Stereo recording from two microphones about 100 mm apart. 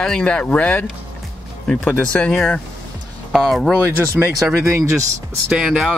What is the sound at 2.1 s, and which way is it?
Speech, 10° left (ahead or behind).